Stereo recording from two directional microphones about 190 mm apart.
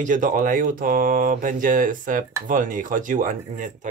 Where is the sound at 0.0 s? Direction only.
40° right (ahead or behind).